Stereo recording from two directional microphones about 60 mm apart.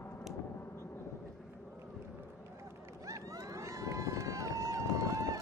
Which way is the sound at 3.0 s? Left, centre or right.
Right.